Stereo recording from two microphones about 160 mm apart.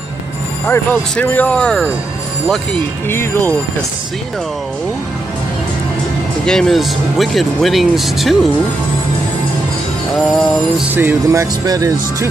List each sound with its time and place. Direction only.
0.7 s speech: 10° left (ahead or behind)
6.4 s speech: 5° left (ahead or behind)
10.1 s speech: centre (ahead or behind)
10.9 s speech: 15° right (ahead or behind)